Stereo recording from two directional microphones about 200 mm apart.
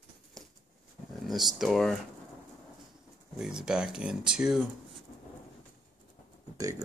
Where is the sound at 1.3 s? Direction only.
Centre (ahead or behind).